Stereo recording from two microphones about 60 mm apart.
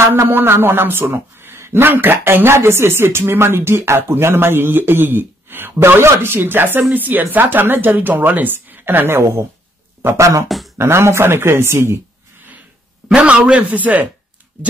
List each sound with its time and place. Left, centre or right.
0.1 s a man's voice: right
10.0 s speech: right
10.8 s speech: right
13.1 s a man's voice: centre